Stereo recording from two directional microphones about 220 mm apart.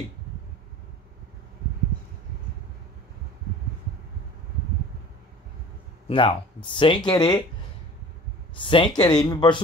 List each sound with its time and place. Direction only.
6.0 s speech: 25° left (ahead or behind)
8.5 s speech: 25° left (ahead or behind)